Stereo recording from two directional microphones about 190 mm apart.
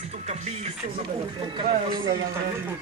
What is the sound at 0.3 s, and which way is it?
Speech, 35° right (ahead or behind).